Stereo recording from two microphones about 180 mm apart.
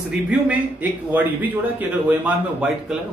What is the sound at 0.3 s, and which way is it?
A man's voice, 10° right (ahead or behind).